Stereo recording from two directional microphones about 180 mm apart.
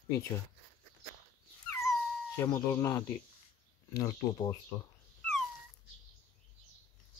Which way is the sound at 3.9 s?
20° left (ahead or behind).